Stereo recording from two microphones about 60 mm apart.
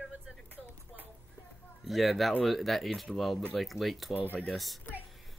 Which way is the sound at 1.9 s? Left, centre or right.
Centre.